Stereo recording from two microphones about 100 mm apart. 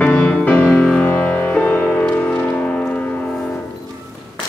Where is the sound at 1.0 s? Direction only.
15° left (ahead or behind).